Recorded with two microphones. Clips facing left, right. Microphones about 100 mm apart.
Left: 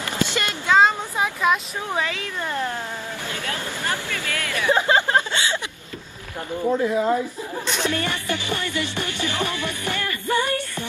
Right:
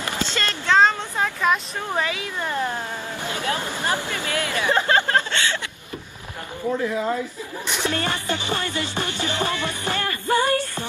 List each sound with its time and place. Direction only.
0.3 s a sound: 15° left (ahead or behind)
2.1 s a woman's voice: 15° right (ahead or behind)
3.3 s music: 20° right (ahead or behind)
4.6 s a sound: 15° left (ahead or behind)
6.8 s speech: 25° left (ahead or behind)
7.6 s music: 15° right (ahead or behind)
7.9 s music: 30° right (ahead or behind)
10.2 s music: 40° right (ahead or behind)